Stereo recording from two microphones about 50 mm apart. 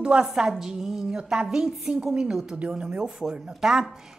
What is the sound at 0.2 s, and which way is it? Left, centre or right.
A woman's voice, centre.